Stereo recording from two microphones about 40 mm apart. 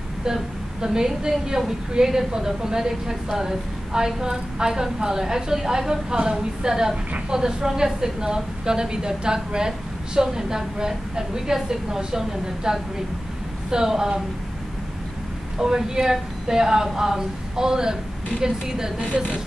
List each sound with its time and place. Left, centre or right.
0.2 s a woman's voice: centre
15.6 s a woman's voice: centre